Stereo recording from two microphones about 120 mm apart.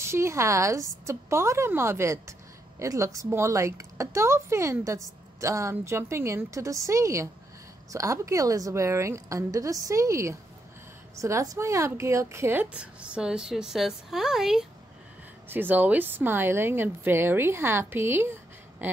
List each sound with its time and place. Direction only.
0.0 s speech: 25° right (ahead or behind); by 14.7 s 5° right (ahead or behind)
15.4 s speech: 15° right (ahead or behind)